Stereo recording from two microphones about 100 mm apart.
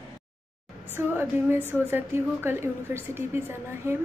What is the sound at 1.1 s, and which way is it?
A woman's voice, 20° right (ahead or behind).